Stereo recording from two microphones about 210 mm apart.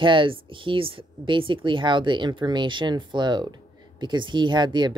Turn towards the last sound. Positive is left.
turn(degrees=-20)  # may be behind; listen again after turning